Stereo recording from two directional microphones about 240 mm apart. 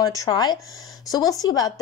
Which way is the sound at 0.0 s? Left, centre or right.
Centre.